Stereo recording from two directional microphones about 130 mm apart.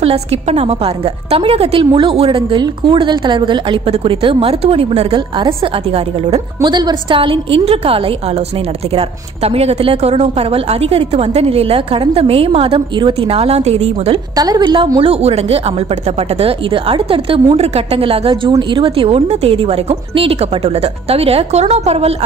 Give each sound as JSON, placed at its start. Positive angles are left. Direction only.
{"t": 0.0, "sound": "a woman's voice", "side_deg": -50}
{"t": 6.7, "sound": "a woman's voice", "side_deg": -35}
{"t": 14.3, "sound": "a woman's voice", "side_deg": -30}
{"t": 15.0, "sound": "a woman's voice", "side_deg": -50}